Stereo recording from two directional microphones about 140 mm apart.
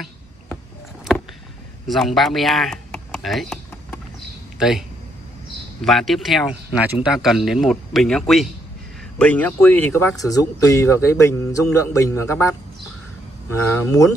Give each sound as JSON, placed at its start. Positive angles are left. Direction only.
{"t": 1.9, "sound": "speech", "side_deg": 0}
{"t": 4.6, "sound": "speech", "side_deg": -5}